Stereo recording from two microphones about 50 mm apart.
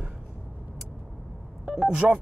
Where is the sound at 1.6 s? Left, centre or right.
Centre.